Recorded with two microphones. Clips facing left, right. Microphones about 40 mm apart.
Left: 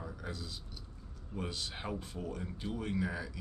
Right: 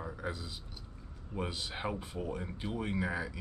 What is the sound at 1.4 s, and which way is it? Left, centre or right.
Speech, centre.